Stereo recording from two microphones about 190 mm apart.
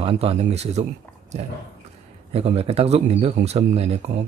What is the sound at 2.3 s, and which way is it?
Speech, 30° right (ahead or behind).